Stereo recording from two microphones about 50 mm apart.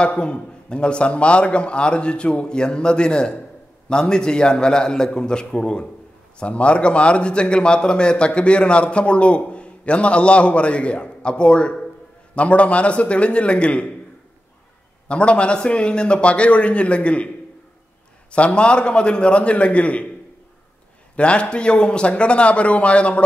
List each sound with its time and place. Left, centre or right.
0.2 s a man's voice: centre
15.0 s a man's voice: left
18.3 s a man's voice: left
21.2 s a man's voice: left